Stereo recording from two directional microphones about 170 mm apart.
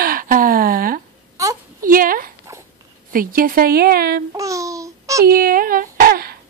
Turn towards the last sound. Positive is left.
turn(degrees=-60)  # may be behind; listen again after turning